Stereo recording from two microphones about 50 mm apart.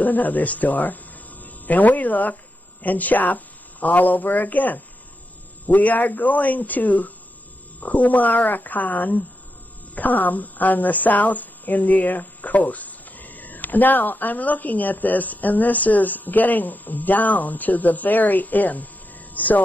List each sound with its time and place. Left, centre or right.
0.0 s a woman's voice: left